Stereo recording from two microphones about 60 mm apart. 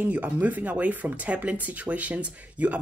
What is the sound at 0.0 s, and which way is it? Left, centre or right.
Speech, right.